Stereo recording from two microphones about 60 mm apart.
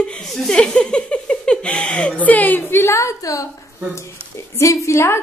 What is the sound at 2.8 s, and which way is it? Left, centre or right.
Speech, left.